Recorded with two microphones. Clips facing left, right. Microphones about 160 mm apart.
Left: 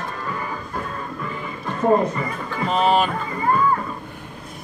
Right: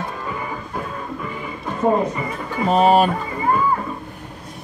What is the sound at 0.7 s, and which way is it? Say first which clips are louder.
Music: right 1 dB; 10° right (ahead or behind).